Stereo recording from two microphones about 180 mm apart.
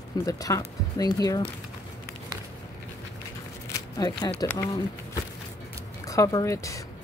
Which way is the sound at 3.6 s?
15° left (ahead or behind).